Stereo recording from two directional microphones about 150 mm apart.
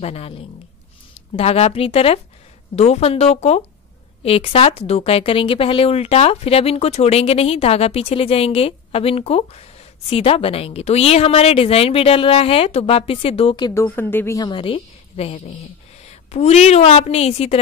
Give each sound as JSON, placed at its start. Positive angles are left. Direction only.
{"t": 0.0, "sound": "a woman's voice", "side_deg": 40}
{"t": 13.7, "sound": "speech", "side_deg": 15}
{"t": 14.5, "sound": "a woman's voice", "side_deg": 35}